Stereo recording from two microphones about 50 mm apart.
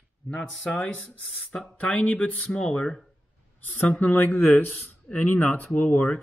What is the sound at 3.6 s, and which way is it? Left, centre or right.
Speech, left.